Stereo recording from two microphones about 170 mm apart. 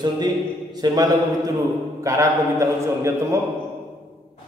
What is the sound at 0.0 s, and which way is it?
A man's voice, 25° right (ahead or behind).